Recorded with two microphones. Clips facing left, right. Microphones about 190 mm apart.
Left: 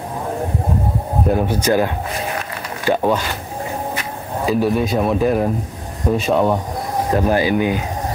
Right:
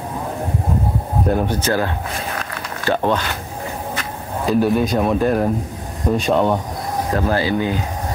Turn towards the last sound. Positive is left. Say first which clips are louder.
# left 2 dB
turn(degrees=15)  # may be behind; listen again after turning